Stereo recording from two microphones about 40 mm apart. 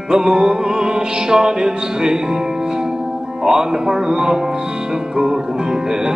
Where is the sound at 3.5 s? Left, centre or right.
Right.